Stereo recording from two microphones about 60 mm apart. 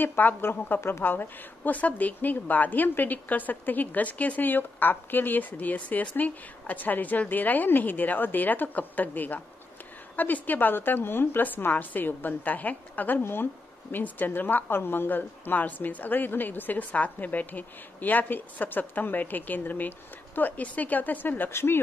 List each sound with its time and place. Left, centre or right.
0.0 s a woman's voice: left
1.0 s a woman's voice: left